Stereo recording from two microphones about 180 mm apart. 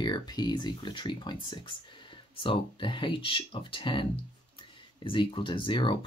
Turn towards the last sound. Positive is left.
turn(degrees=25)  # may be behind; listen again after turning